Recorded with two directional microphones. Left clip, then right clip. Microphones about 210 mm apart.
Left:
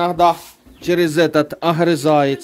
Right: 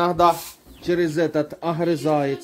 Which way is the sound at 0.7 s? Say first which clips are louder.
Left 6 dB; 30° left (ahead or behind).